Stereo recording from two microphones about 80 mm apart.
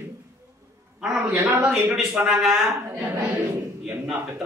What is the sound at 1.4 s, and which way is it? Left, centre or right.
Speech, right.